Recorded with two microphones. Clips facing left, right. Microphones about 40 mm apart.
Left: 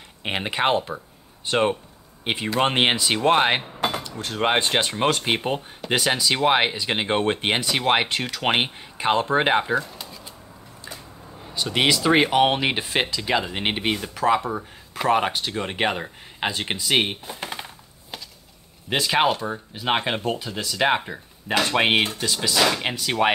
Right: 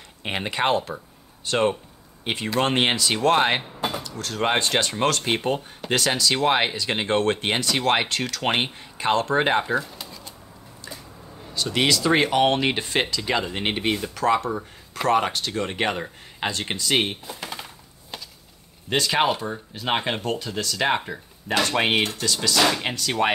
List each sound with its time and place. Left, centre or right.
0.2 s speech: centre
11.4 s speech: centre
17.3 s typewriter: left
18.9 s speech: centre